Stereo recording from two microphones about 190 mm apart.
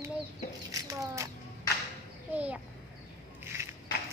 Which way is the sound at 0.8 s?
15° right (ahead or behind).